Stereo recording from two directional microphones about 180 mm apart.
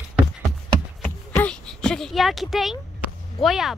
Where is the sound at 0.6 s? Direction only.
5° left (ahead or behind).